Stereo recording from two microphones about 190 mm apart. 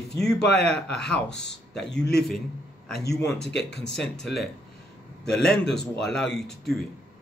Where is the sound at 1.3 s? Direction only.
65° left (ahead or behind).